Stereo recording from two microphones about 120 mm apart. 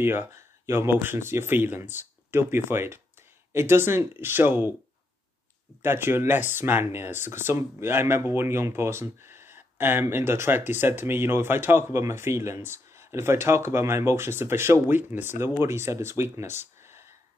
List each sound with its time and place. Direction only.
0.0 s speech: 20° right (ahead or behind)
5.8 s speech: 20° right (ahead or behind)